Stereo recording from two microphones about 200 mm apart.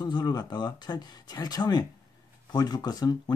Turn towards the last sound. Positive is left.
turn(degrees=20)  # may be behind; listen again after turning